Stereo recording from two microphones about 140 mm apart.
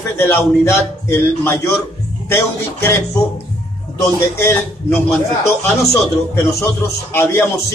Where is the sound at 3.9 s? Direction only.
15° left (ahead or behind).